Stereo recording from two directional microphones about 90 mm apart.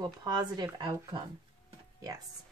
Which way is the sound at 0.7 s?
60° right (ahead or behind).